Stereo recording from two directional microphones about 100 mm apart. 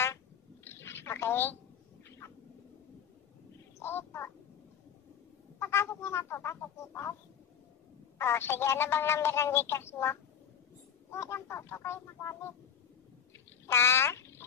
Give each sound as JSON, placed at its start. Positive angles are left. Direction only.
{"t": 0.7, "sound": "a sound", "side_deg": 25}
{"t": 3.8, "sound": "a woman's voice", "side_deg": 25}
{"t": 5.6, "sound": "speech", "side_deg": 25}
{"t": 8.2, "sound": "speech", "side_deg": 25}
{"t": 13.7, "sound": "speech", "side_deg": 25}